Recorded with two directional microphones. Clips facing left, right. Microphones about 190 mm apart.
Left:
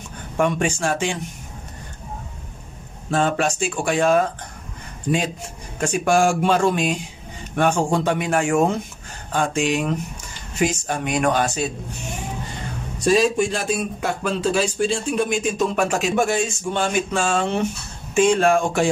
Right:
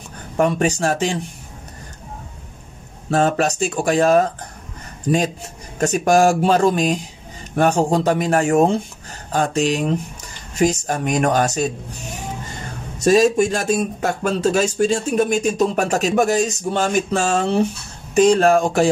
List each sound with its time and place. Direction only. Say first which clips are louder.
0.4 s speech: right 3 dB; 40° right (ahead or behind)
3.1 s speech: right 3 dB; 40° right (ahead or behind)
5.8 s speech: right 3 dB; 40° right (ahead or behind)
13.0 s speech: right 4 dB; 45° right (ahead or behind)